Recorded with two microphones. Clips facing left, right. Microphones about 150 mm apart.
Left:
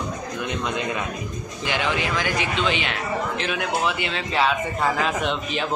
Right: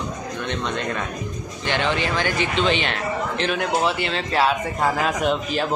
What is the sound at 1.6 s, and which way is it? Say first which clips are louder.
Speech: right 2 dB; 5° left (ahead or behind).